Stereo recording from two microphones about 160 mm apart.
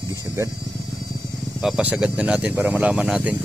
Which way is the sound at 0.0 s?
20° right (ahead or behind).